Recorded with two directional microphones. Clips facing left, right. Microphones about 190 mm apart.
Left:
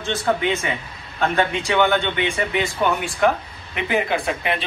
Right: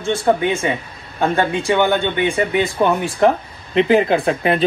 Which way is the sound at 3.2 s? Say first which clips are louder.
Right 4 dB; 30° right (ahead or behind).